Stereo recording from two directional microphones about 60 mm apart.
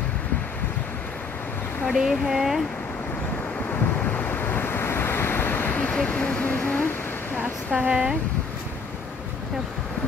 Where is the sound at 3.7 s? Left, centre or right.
Left.